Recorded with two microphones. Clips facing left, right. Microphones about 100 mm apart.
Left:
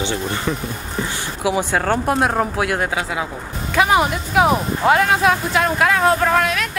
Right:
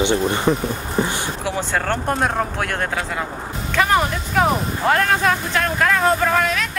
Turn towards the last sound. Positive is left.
turn(degrees=0)  # may be behind; listen again after turning